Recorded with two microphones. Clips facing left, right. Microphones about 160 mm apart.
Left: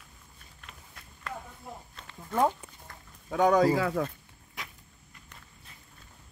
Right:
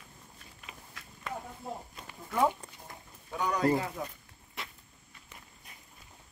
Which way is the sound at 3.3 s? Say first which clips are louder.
Left 6 dB; 90° left.